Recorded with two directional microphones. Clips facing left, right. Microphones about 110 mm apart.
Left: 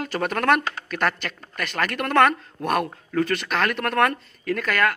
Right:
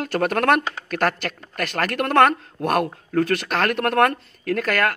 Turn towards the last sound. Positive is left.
turn(degrees=-45)  # may be behind; listen again after turning